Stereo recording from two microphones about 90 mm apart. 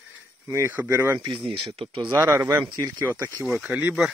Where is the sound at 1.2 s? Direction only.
70° right (ahead or behind).